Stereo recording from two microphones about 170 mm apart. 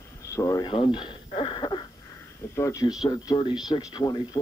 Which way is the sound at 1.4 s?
25° left (ahead or behind).